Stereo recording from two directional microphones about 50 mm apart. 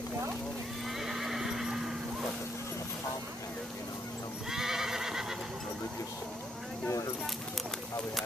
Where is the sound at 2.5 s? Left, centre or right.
Left.